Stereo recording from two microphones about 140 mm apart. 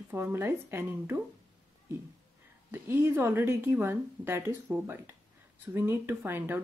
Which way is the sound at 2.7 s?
15° right (ahead or behind).